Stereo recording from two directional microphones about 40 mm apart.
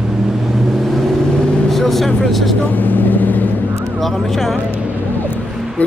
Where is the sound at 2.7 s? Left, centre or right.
Left.